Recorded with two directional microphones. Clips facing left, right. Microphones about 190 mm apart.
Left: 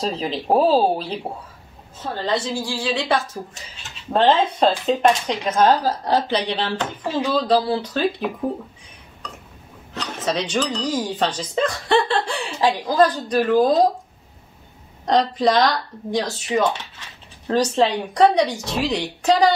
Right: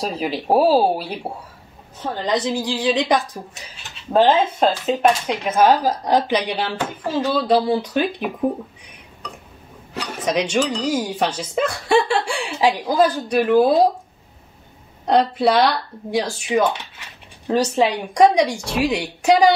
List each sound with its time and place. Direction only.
0.0 s speech: 10° right (ahead or behind)
4.1 s speech: 5° right (ahead or behind)
9.9 s speech: 10° right (ahead or behind)
15.0 s speech: 10° right (ahead or behind)